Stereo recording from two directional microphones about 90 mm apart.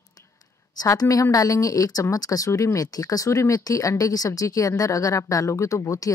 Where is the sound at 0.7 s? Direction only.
45° left (ahead or behind).